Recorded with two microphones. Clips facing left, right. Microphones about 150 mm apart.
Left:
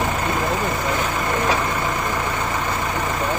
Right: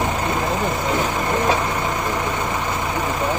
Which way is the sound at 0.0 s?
20° right (ahead or behind).